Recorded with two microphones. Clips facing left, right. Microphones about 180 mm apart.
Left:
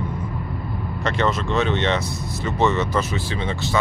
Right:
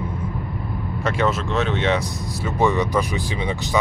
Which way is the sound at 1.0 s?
5° right (ahead or behind).